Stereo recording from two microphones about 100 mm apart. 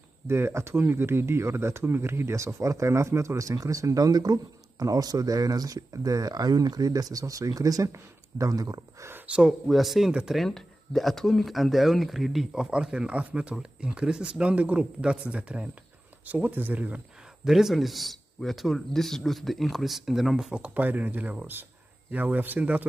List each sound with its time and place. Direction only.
0.3 s speech: 25° right (ahead or behind)
9.1 s speech: 15° right (ahead or behind)
17.5 s speech: 5° right (ahead or behind)